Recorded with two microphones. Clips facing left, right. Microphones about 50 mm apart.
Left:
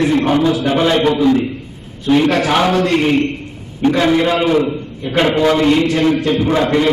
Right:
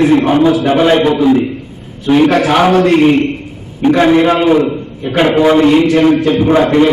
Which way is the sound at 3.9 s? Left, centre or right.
Right.